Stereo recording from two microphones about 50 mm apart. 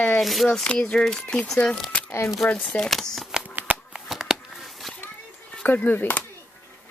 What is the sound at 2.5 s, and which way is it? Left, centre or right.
Speech, centre.